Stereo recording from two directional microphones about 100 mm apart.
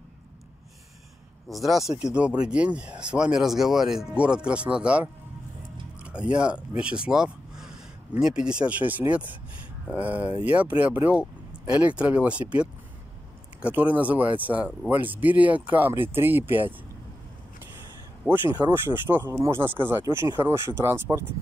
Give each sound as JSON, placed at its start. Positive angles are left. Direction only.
{"t": 1.5, "sound": "speech", "side_deg": 0}
{"t": 18.3, "sound": "speech", "side_deg": 5}
{"t": 18.7, "sound": "speech", "side_deg": -20}